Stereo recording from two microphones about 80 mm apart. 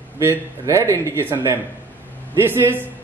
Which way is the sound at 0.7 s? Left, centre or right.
Right.